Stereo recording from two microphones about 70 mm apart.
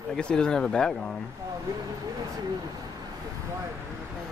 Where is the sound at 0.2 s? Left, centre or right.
Centre.